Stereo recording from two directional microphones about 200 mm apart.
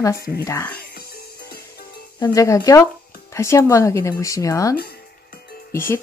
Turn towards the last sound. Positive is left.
turn(degrees=10)  # may be behind; listen again after turning